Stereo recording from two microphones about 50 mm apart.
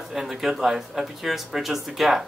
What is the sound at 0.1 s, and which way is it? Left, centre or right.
Speech, centre.